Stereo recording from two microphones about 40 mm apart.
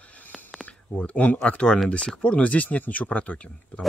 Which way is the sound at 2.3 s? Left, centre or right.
Left.